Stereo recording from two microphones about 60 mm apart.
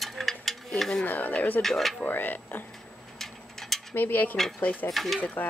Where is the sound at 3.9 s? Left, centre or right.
Left.